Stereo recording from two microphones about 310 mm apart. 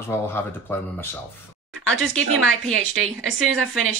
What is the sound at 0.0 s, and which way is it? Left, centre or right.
Speech, centre.